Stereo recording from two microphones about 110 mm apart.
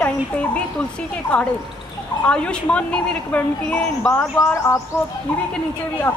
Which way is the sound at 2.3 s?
10° left (ahead or behind).